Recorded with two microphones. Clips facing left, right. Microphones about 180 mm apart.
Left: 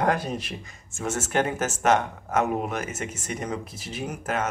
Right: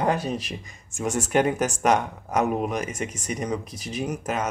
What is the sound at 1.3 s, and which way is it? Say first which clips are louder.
Speech: right 4 dB; 10° right (ahead or behind).